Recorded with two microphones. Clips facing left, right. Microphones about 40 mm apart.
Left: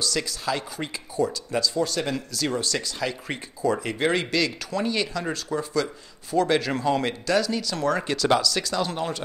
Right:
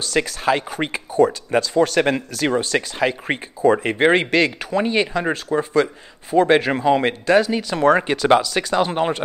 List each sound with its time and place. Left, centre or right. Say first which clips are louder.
0.0 s speech: right 7 dB; right